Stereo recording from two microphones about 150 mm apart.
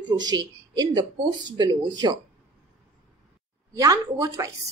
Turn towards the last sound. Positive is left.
turn(degrees=-20)  # may be behind; listen again after turning